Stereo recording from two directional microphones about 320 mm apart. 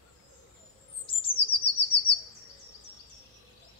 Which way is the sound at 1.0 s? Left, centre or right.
Centre.